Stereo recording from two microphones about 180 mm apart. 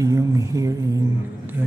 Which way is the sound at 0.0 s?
20° right (ahead or behind).